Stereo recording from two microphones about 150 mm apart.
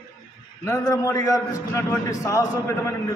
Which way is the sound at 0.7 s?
20° left (ahead or behind).